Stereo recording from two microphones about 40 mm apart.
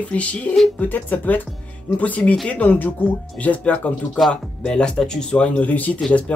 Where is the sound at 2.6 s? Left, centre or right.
Left.